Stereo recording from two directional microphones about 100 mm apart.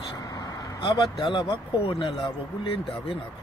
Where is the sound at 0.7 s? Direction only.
50° left (ahead or behind).